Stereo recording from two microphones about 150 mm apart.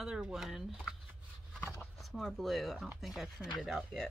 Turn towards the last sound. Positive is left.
turn(degrees=0)  # may be behind; listen again after turning